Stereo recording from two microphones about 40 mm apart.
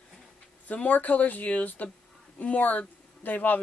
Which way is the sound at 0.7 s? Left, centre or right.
Left.